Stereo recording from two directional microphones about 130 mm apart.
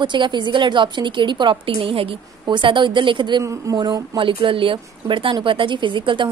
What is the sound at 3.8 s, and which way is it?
A woman's voice, 35° right (ahead or behind).